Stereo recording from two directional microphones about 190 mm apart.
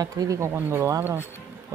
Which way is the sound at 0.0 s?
20° right (ahead or behind).